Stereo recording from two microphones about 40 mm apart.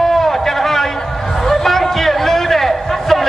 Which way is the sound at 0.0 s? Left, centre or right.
Centre.